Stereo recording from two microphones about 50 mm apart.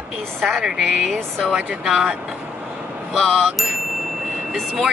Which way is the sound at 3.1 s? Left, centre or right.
Centre.